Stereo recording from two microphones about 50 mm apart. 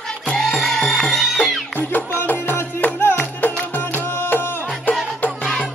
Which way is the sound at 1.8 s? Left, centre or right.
Left.